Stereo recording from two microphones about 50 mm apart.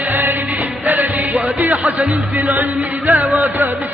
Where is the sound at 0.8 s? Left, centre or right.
Right.